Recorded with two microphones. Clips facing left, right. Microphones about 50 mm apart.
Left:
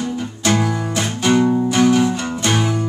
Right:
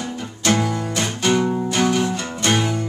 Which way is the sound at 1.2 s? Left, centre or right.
Centre.